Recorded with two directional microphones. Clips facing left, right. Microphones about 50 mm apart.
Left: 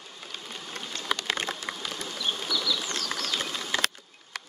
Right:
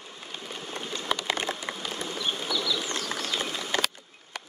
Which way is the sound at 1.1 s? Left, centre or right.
Right.